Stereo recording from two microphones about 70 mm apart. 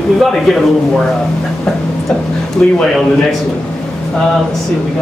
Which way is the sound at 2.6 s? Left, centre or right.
Centre.